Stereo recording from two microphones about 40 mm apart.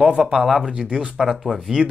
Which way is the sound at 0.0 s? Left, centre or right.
Right.